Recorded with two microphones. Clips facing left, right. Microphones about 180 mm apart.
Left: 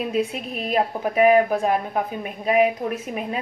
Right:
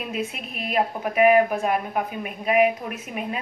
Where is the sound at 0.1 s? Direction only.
35° left (ahead or behind).